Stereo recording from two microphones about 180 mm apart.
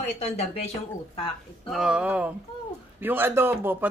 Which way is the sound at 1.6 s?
Centre (ahead or behind).